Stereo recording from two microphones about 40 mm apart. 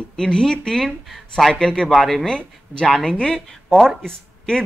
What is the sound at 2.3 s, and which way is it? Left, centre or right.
Speech, left.